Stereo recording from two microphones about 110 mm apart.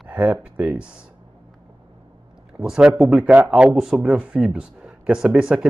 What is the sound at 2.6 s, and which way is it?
Speech, 5° right (ahead or behind).